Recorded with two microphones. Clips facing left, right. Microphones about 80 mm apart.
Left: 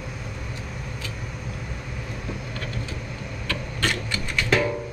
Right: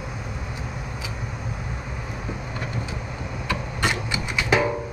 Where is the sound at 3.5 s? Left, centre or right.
Centre.